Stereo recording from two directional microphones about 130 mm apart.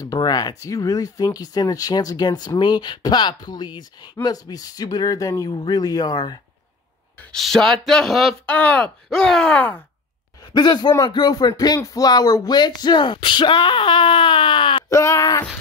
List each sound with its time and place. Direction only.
0.0 s speech: 30° left (ahead or behind)
7.3 s speech: centre (ahead or behind)
8.5 s speech: 10° left (ahead or behind)
10.5 s speech: 35° left (ahead or behind)
14.9 s speech: 25° left (ahead or behind)